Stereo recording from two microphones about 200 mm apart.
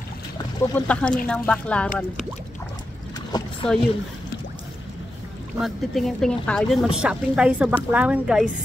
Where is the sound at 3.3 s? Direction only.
20° left (ahead or behind).